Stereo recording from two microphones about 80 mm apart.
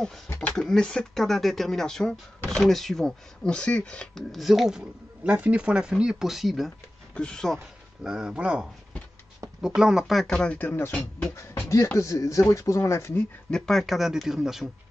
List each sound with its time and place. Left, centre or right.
0.4 s a sound: centre
0.7 s speech: centre
4.3 s speech: centre
7.2 s speech: centre
8.0 s speech: centre
10.3 s speech: centre
10.6 s speech: left
11.3 s speech: left
13.5 s speech: centre